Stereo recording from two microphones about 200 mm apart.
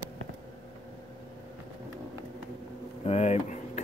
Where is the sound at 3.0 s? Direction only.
30° left (ahead or behind).